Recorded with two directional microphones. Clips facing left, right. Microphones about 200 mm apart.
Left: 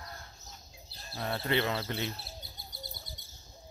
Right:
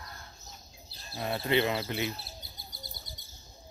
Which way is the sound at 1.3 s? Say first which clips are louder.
Right 3 dB; 15° right (ahead or behind).